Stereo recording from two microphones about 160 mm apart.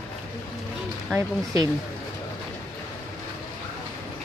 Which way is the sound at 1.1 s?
25° right (ahead or behind).